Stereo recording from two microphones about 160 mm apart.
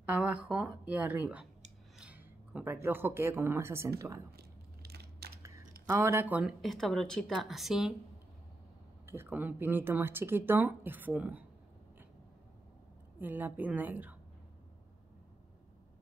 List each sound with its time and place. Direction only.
0.0 s speech: 10° right (ahead or behind)
4.4 s a sound: 75° right (ahead or behind)
5.9 s speech: 15° right (ahead or behind)
9.0 s speech: 15° right (ahead or behind)
13.2 s speech: 10° right (ahead or behind)